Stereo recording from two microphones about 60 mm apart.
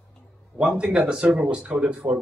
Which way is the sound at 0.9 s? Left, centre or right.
Centre.